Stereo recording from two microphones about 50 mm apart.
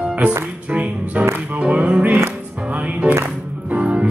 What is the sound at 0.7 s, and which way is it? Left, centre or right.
Music, right.